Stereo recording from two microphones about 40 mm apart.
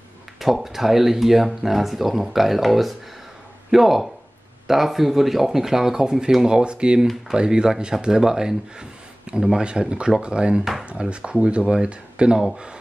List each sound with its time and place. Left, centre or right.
0.4 s speech: centre; by 10.6 s right
10.6 s speech: centre
10.9 s speech: right